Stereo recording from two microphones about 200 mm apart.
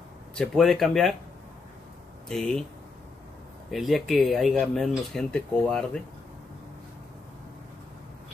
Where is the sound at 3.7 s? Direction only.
Centre (ahead or behind).